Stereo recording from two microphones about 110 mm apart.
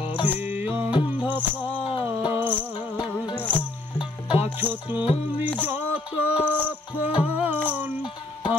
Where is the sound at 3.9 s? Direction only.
60° left (ahead or behind).